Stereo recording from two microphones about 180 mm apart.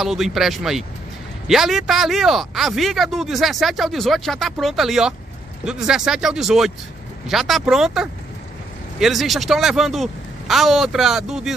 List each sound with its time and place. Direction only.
0.0 s speech: centre (ahead or behind)